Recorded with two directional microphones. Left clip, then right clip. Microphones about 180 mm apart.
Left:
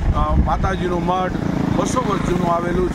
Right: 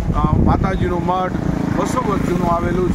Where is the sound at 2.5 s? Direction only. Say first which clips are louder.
Right 1 dB; 5° left (ahead or behind).